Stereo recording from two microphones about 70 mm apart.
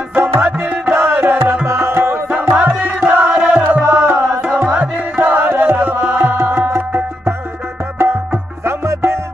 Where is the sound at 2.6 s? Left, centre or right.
Centre.